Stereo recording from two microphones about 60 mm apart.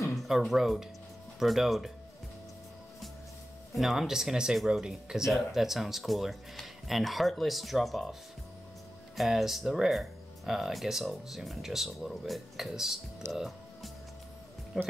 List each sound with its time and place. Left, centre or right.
0.3 s speech: centre
3.7 s speech: centre
13.2 s speech: right
14.7 s speech: centre